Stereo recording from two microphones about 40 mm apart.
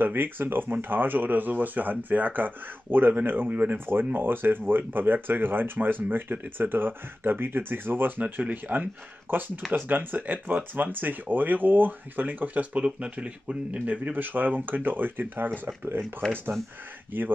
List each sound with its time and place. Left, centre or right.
0.0 s speech: right
3.4 s speech: right
3.7 s speech: right
9.3 s speech: right
9.8 s speech: right
12.7 s speech: right
14.2 s speech: right
15.6 s speech: right
16.2 s speech: centre
17.1 s speech: right